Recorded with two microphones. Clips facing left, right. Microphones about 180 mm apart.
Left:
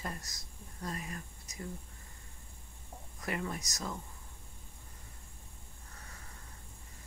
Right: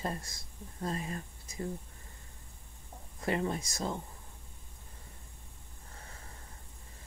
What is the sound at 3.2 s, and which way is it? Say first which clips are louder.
Speech: right 6 dB; 25° right (ahead or behind).